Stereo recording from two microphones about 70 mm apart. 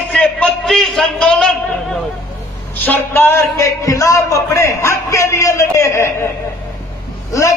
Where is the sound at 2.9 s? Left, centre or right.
Left.